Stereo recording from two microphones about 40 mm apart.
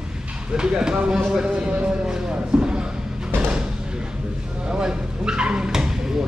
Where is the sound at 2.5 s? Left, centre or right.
Centre.